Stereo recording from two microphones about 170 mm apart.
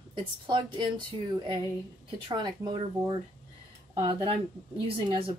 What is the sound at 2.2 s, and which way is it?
Speech, 25° right (ahead or behind).